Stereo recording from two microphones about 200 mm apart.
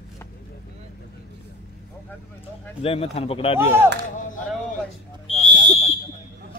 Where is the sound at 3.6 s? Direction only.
10° right (ahead or behind).